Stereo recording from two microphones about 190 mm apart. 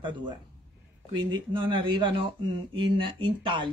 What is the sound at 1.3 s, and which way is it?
Speech, 25° right (ahead or behind).